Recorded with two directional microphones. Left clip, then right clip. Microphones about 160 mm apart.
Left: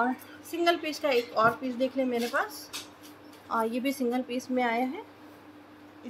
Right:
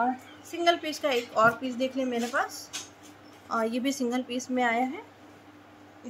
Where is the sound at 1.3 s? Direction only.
20° right (ahead or behind).